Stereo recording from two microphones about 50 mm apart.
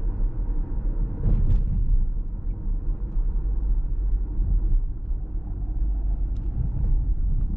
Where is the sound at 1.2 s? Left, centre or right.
Centre.